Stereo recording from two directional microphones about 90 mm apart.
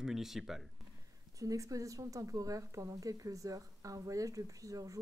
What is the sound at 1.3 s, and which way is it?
Speech, 40° right (ahead or behind).